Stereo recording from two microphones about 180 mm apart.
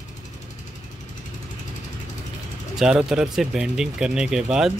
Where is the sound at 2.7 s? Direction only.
5° right (ahead or behind).